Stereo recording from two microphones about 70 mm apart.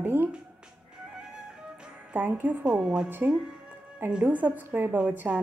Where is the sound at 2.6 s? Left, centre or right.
Centre.